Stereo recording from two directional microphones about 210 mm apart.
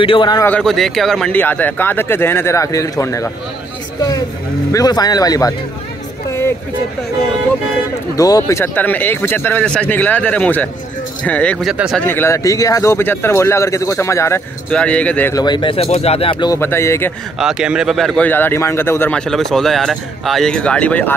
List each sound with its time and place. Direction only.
0.0 s a man's voice: 25° left (ahead or behind)
0.5 s a man's voice: 5° left (ahead or behind)
4.7 s a man's voice: 20° left (ahead or behind)
8.2 s a man's voice: 15° left (ahead or behind); by 12.0 s centre (ahead or behind)
12.0 s a man's voice: 10° left (ahead or behind)
17.4 s speech: 5° right (ahead or behind)